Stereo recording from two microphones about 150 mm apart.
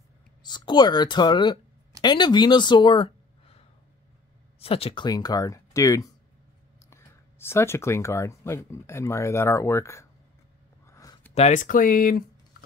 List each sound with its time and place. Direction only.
0.4 s speech: 30° left (ahead or behind)
5.0 s speech: 25° left (ahead or behind)
10.9 s a sound: 20° left (ahead or behind)
11.3 s speech: 50° left (ahead or behind); by 12.3 s 75° left (ahead or behind)